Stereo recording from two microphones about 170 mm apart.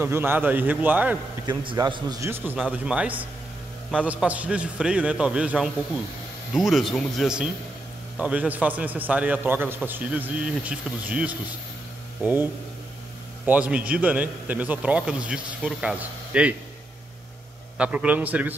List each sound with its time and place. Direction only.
0.0 s a man's voice: 15° right (ahead or behind)
1.4 s a man's voice: 30° right (ahead or behind); by 12.4 s 10° right (ahead or behind)
13.5 s a man's voice: 10° right (ahead or behind)
17.7 s a man's voice: 5° right (ahead or behind)